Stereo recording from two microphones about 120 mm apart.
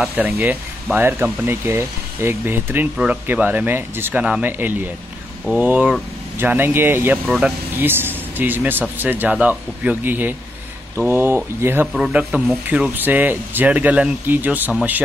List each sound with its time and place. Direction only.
0.0 s speech: 10° right (ahead or behind)
7.2 s a man's voice: 5° right (ahead or behind)
7.7 s speech: 15° right (ahead or behind)
11.9 s a man's voice: 5° right (ahead or behind)